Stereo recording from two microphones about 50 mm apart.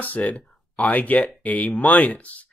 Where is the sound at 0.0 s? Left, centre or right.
Left.